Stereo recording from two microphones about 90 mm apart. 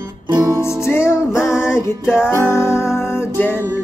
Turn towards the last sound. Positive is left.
turn(degrees=25)  # may be behind; listen again after turning